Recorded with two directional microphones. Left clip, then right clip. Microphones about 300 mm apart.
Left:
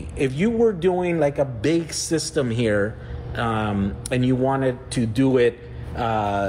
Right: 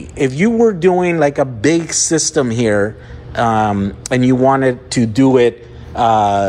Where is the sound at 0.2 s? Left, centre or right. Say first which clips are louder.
Right 7 dB; right.